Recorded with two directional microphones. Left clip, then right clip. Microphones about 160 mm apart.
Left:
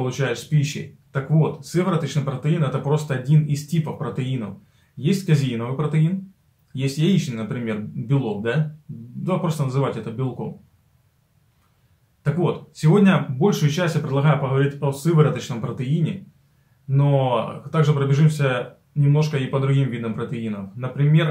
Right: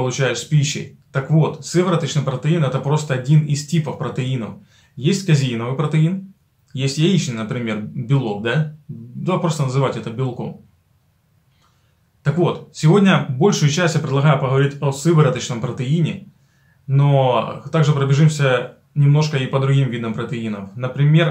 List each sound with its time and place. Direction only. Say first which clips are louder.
0.0 s speech: right 5 dB; 15° right (ahead or behind)
12.2 s speech: right 4 dB; 15° right (ahead or behind)